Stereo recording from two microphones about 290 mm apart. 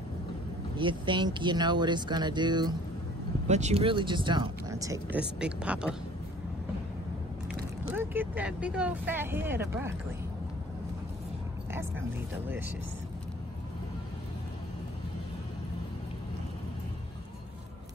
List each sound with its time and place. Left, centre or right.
0.7 s speech: centre
7.9 s speech: centre